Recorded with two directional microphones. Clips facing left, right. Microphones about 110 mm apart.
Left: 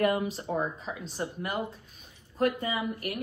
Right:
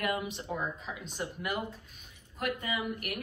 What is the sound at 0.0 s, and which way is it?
Speech, 40° left (ahead or behind).